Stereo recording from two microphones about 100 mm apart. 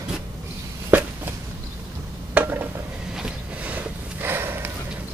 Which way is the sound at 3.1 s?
10° right (ahead or behind).